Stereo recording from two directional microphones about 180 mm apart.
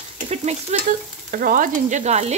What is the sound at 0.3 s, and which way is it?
Speech, 40° right (ahead or behind).